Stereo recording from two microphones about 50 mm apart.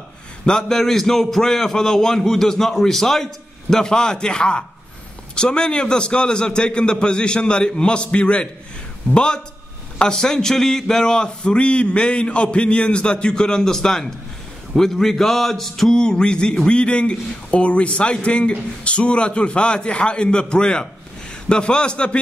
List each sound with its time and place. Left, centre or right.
0.5 s a man's voice: centre
16.0 s a man's voice: centre